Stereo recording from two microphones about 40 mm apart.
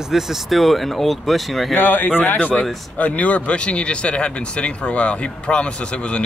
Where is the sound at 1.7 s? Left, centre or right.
Left.